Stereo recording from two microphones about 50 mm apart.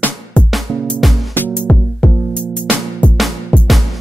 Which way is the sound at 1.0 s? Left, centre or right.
Centre.